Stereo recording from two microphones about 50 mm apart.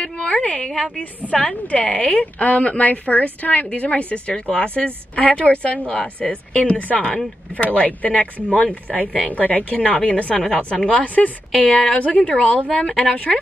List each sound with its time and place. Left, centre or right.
0.0 s a sound: left
0.9 s a woman's voice: left
13.0 s a woman's voice: left